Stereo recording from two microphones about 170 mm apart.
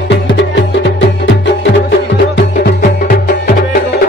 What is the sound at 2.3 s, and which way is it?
Music, 65° left (ahead or behind).